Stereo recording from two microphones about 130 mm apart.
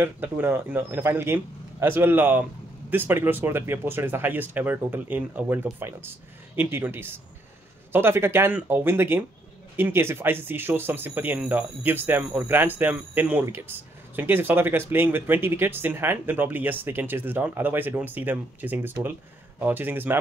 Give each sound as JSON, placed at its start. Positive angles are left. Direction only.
{"t": 0.0, "sound": "speech", "side_deg": -15}